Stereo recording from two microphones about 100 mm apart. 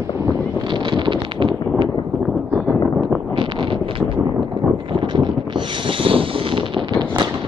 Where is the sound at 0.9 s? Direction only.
55° right (ahead or behind).